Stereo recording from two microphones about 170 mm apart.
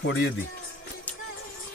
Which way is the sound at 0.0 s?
75° left (ahead or behind).